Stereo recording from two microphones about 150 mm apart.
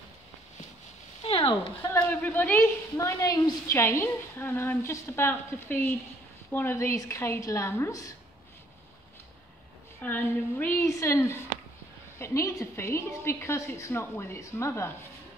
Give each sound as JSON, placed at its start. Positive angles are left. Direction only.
{"t": 1.2, "sound": "a sound", "side_deg": 40}
{"t": 1.8, "sound": "a woman's voice", "side_deg": 15}
{"t": 10.0, "sound": "a woman's voice", "side_deg": 15}